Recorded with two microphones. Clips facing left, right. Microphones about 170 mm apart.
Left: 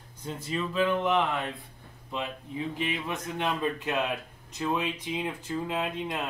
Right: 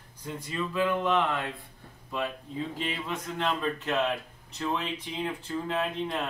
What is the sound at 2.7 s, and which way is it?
Speech, 15° left (ahead or behind).